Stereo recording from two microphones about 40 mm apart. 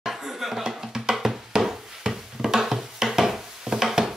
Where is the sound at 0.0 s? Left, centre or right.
Centre.